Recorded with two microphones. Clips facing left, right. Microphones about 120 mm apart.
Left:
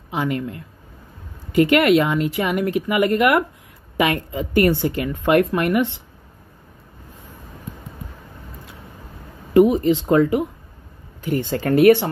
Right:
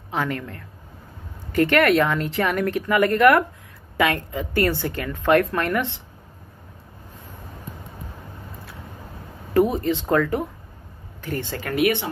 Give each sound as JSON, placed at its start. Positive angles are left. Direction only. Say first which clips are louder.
{"t": 0.1, "sound": "speech", "louder": "left 3 dB", "side_deg": 15}
{"t": 9.5, "sound": "speech", "louder": "left 5 dB", "side_deg": 15}
{"t": 11.2, "sound": "speech", "louder": "left 6 dB", "side_deg": 15}
{"t": 11.5, "sound": "speech", "louder": "left 9 dB", "side_deg": 30}